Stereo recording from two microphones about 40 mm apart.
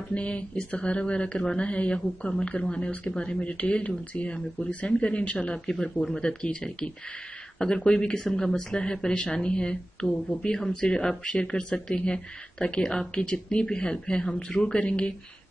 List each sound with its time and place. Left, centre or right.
0.1 s speech: left